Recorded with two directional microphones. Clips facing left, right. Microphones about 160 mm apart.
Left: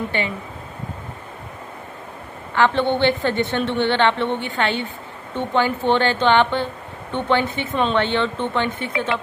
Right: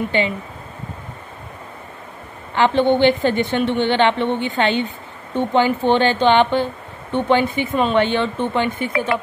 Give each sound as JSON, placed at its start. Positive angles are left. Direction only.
{"t": 0.1, "sound": "speech", "side_deg": -20}
{"t": 2.5, "sound": "a woman's voice", "side_deg": -15}